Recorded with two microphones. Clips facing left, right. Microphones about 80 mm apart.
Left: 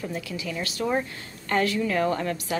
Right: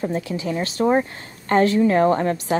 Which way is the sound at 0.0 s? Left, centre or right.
Right.